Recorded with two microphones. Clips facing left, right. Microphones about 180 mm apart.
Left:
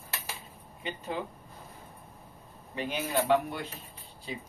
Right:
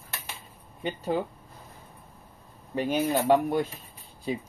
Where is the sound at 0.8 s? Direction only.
40° right (ahead or behind).